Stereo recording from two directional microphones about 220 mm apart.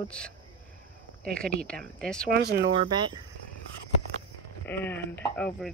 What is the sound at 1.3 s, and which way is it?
Speech, 5° left (ahead or behind).